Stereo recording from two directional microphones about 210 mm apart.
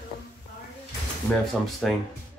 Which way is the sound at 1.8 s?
Centre (ahead or behind).